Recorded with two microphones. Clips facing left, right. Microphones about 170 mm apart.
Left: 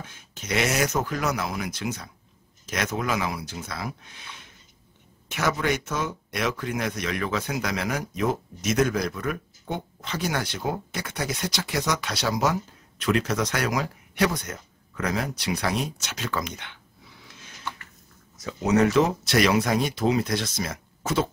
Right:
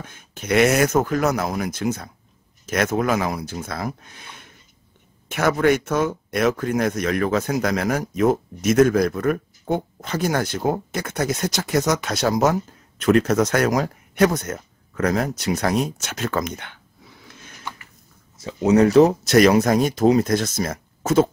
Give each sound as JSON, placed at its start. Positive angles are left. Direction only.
{"t": 0.1, "sound": "speech", "side_deg": -55}
{"t": 18.4, "sound": "speech", "side_deg": -30}